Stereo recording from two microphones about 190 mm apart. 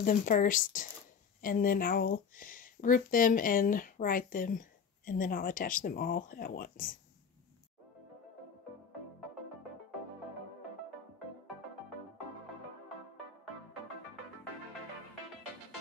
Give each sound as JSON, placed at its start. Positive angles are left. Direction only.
{"t": 0.0, "sound": "speech", "side_deg": 45}